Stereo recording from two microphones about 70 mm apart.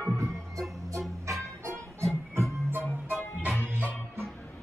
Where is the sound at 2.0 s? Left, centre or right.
Right.